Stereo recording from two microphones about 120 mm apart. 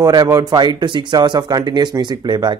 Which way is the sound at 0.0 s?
30° right (ahead or behind).